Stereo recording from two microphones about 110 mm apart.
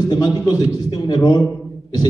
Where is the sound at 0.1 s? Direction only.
35° left (ahead or behind).